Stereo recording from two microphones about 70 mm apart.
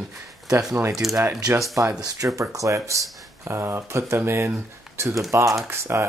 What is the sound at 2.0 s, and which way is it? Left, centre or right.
Speech, right.